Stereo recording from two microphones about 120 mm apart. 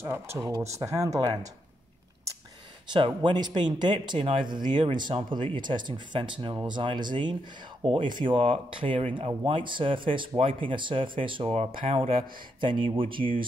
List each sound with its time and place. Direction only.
0.0 s speech: 20° right (ahead or behind)
3.2 s speech: 40° right (ahead or behind)